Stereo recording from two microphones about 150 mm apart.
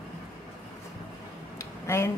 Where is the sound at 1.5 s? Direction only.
20° left (ahead or behind).